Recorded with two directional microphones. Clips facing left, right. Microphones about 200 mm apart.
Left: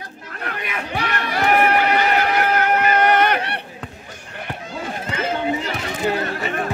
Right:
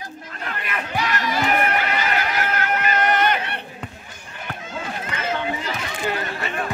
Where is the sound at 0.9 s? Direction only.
60° left (ahead or behind).